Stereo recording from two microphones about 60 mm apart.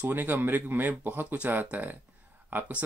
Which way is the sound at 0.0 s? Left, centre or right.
Right.